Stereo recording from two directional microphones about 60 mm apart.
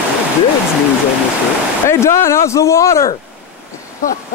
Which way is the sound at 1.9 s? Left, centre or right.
Left.